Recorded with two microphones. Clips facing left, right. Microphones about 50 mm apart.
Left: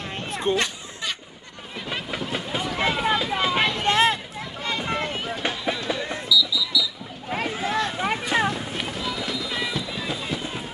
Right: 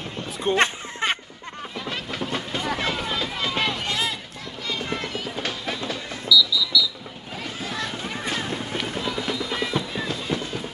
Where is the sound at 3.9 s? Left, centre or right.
Left.